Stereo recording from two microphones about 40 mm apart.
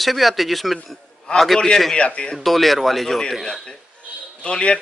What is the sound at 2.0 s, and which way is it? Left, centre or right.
Speech, left.